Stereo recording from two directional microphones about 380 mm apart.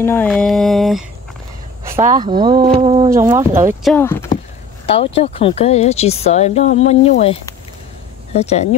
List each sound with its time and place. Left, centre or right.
0.0 s mantra: centre
2.0 s speech: centre